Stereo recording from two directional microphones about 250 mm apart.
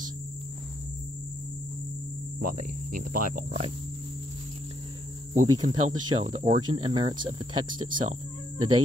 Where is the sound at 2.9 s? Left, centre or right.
Right.